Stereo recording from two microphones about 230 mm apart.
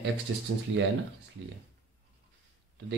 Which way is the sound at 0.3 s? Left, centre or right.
Right.